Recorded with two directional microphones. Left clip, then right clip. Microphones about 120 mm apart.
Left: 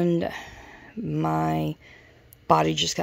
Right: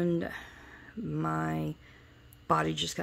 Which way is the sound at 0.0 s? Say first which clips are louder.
Left 7 dB; 25° left (ahead or behind).